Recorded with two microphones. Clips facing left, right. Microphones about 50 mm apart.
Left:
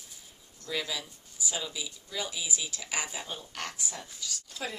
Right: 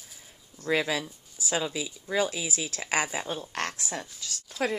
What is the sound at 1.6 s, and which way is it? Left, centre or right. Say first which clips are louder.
Speech: right 7 dB; right.